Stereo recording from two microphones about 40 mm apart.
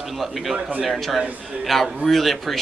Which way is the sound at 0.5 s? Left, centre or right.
Right.